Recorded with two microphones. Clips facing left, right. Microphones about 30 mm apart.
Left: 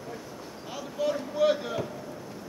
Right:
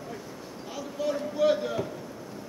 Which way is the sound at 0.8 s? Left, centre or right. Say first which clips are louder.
Left 1 dB; centre.